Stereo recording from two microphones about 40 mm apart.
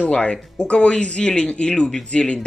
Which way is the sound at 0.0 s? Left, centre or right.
Left.